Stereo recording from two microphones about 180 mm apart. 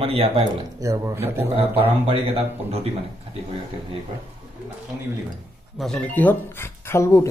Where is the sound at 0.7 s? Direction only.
20° right (ahead or behind).